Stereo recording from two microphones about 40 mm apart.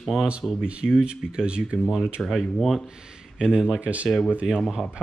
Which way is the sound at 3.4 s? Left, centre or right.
Right.